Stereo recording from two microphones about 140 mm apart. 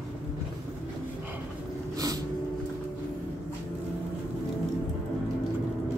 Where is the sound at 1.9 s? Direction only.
25° right (ahead or behind).